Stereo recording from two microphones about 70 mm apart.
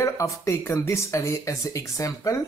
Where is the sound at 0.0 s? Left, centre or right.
Left.